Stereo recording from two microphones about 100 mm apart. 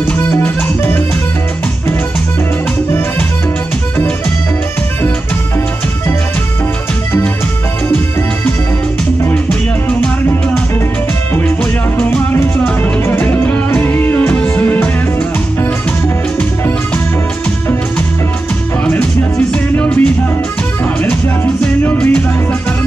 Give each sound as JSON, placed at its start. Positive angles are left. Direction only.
{"t": 9.3, "sound": "music", "side_deg": 15}
{"t": 12.0, "sound": "music", "side_deg": 15}
{"t": 18.9, "sound": "music", "side_deg": 15}
{"t": 21.8, "sound": "music", "side_deg": 15}